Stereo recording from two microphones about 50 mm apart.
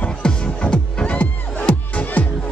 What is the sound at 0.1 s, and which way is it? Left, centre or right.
Music, centre.